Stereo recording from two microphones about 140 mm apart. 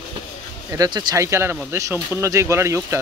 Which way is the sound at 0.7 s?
25° right (ahead or behind).